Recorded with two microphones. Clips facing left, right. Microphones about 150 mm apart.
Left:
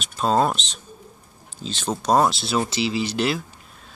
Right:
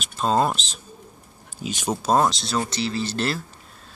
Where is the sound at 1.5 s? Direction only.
10° right (ahead or behind).